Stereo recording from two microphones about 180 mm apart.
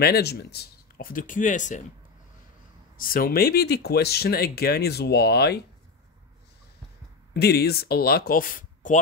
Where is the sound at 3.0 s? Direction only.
55° left (ahead or behind).